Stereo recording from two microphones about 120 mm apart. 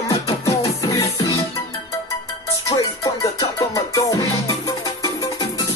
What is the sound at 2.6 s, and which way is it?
Music, 30° left (ahead or behind).